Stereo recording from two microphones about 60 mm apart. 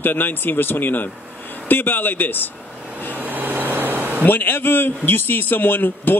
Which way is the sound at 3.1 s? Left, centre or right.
Right.